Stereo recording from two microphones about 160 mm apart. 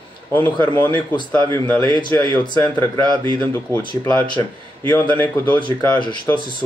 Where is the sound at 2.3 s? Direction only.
10° left (ahead or behind).